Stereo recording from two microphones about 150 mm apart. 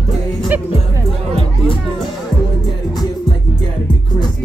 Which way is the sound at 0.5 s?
10° right (ahead or behind).